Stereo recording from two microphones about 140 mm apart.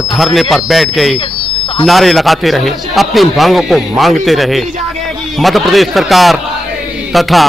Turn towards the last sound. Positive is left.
turn(degrees=0)  # may be behind; listen again after turning